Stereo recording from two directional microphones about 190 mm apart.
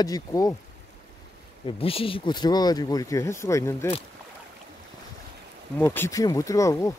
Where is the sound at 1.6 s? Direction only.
30° left (ahead or behind).